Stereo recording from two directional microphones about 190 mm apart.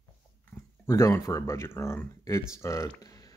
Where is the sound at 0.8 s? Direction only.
15° left (ahead or behind).